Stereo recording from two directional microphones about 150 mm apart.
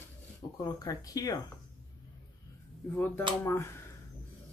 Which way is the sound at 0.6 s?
25° left (ahead or behind).